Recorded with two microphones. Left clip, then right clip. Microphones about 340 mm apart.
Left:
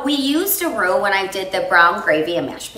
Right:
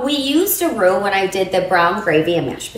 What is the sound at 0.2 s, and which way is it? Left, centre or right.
A woman's voice, centre.